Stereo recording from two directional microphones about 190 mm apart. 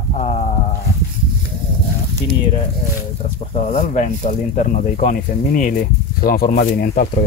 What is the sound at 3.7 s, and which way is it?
Speech, 35° left (ahead or behind).